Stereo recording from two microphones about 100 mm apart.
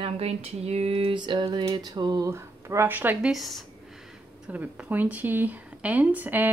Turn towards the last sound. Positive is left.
turn(degrees=-20)  # may be behind; listen again after turning